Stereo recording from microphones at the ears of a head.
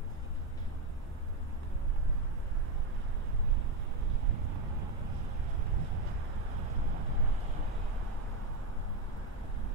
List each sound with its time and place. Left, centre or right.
4.3 s vehicle: right